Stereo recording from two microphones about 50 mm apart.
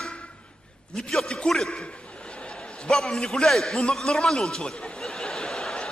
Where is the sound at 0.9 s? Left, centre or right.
Centre.